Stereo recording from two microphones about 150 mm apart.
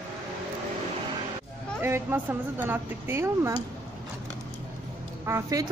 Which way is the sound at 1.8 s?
15° right (ahead or behind).